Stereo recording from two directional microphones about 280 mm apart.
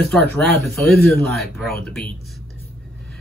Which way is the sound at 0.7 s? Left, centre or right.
Centre.